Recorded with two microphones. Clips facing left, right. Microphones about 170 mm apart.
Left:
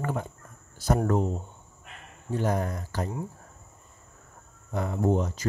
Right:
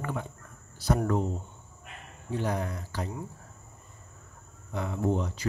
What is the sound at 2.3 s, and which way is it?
Speech, 45° left (ahead or behind).